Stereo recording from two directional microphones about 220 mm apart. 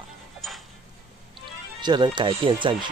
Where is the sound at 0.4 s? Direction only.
Centre (ahead or behind).